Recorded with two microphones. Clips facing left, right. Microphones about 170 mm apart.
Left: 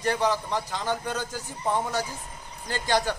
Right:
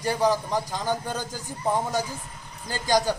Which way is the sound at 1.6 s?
15° right (ahead or behind).